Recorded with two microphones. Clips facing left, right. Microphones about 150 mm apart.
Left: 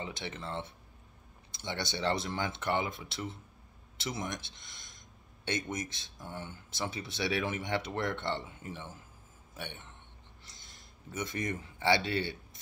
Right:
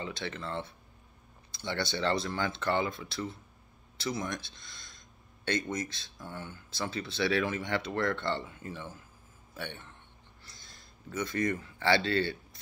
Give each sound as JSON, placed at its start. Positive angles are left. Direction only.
{"t": 0.0, "sound": "a man's voice", "side_deg": 20}
{"t": 10.4, "sound": "a sound", "side_deg": 20}
{"t": 11.1, "sound": "speech", "side_deg": 20}